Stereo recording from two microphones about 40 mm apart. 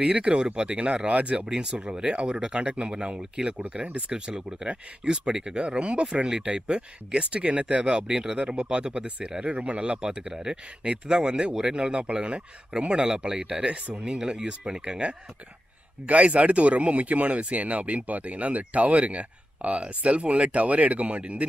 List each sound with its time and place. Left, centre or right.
0.1 s speech: right
1.5 s speech: right
8.1 s speech: centre; by 14.0 s right
14.0 s speech: right